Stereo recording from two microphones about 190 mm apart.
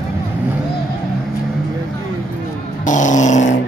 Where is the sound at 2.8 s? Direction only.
40° left (ahead or behind).